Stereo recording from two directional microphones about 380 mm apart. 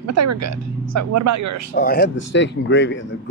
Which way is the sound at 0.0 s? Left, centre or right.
Right.